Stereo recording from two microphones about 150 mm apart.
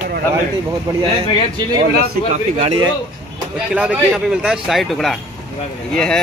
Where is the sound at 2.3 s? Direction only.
45° right (ahead or behind).